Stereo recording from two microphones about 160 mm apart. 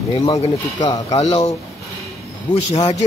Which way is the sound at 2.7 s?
40° left (ahead or behind).